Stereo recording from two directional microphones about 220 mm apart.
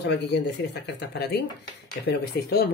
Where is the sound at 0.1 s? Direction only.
50° left (ahead or behind).